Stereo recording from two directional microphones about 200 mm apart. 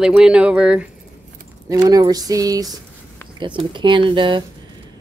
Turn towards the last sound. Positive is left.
turn(degrees=-25)  # may be behind; listen again after turning